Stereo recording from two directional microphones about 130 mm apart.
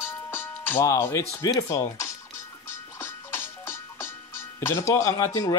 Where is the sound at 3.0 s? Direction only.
20° left (ahead or behind).